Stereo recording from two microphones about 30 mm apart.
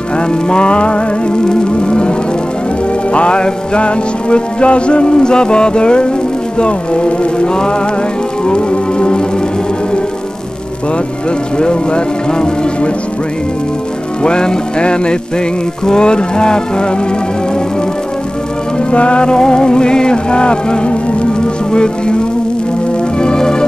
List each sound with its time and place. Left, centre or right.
0.3 s music: left
11.5 s music: left
14.2 s music: left
18.8 s music: left
23.2 s music: left